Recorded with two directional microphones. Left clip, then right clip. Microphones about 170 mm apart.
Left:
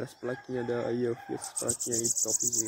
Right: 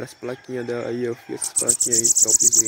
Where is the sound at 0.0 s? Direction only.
15° right (ahead or behind).